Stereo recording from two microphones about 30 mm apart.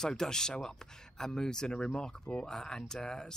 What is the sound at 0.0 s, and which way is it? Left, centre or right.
Speech, centre.